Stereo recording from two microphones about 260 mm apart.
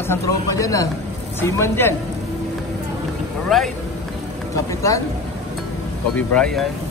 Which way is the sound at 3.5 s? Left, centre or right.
Centre.